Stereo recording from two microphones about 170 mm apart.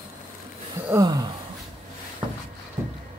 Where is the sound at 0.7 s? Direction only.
15° right (ahead or behind).